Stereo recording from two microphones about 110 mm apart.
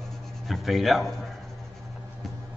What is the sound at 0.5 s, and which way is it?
Speech, centre (ahead or behind).